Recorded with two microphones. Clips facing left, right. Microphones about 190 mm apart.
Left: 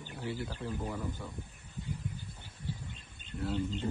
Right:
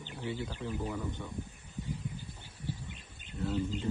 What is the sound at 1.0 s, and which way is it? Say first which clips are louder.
Speech: even; 5° left (ahead or behind).